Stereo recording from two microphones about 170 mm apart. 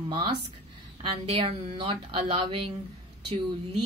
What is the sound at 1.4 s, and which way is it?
A woman's voice, 30° right (ahead or behind).